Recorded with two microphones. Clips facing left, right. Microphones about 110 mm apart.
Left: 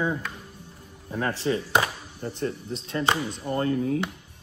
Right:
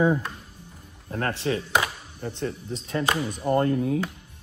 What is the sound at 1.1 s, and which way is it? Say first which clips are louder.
Speech: even; 10° left (ahead or behind).